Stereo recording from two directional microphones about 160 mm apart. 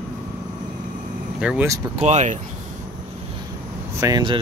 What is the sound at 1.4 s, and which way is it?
Speech, 5° right (ahead or behind).